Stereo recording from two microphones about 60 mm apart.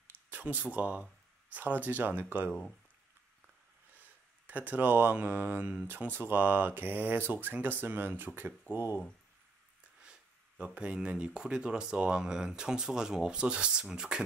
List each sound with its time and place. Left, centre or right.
0.3 s speech: right
4.5 s speech: right
10.6 s speech: right